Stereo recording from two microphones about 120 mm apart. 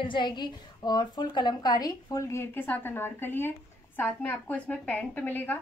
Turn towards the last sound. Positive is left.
turn(degrees=15)  # may be behind; listen again after turning